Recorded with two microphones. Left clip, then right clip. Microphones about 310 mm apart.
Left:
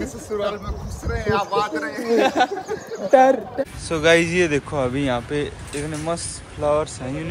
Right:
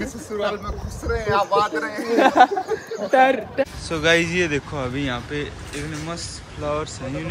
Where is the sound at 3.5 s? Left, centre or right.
Centre.